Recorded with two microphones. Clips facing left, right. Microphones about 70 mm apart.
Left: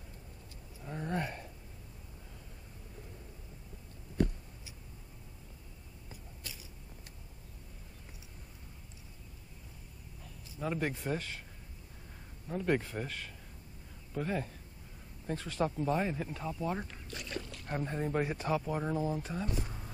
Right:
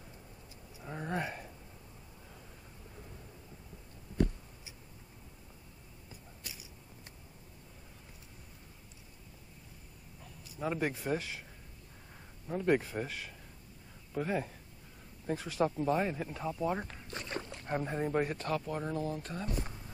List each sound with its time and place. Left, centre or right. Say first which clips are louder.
0.7 s a sound: even; centre
10.2 s speech: right 1 dB; centre
12.4 s speech: right 2 dB; centre
16.8 s a sound: right 2 dB; right
17.6 s speech: right 2 dB; centre
18.2 s speech: left 1 dB; centre